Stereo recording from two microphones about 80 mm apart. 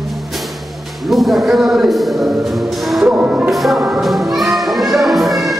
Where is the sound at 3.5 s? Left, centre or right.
Centre.